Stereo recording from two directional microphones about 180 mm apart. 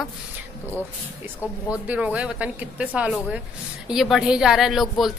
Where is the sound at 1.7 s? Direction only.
10° right (ahead or behind).